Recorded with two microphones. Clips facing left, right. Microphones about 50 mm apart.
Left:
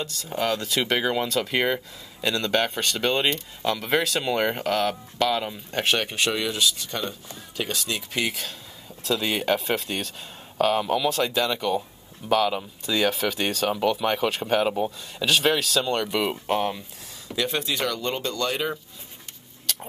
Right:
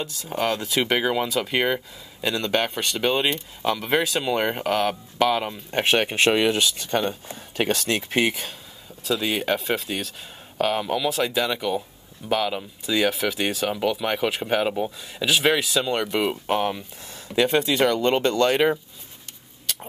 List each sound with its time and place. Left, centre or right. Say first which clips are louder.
0.0 s speech: right 1 dB; centre
6.1 s speech: right 6 dB; right
9.0 s speech: right 1 dB; centre
17.4 s speech: right 7 dB; right
18.0 s speech: right 7 dB; right
19.6 s a sound: even; centre